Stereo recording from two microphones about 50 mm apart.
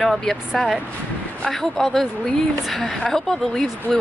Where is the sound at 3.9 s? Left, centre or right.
Left.